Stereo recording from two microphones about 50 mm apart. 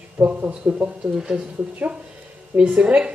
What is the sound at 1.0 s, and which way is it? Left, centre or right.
A woman's voice, right.